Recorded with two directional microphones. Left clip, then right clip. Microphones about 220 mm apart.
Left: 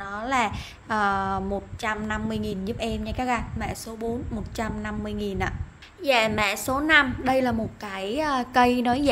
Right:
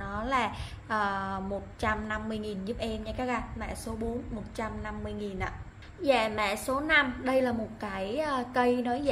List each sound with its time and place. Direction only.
0.0 s a woman's voice: 30° left (ahead or behind)